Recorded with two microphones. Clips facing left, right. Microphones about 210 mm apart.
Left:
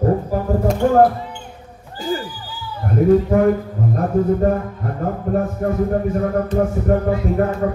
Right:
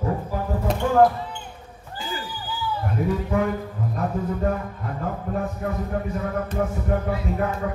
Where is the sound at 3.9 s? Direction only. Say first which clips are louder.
Left 10 dB; 45° left (ahead or behind).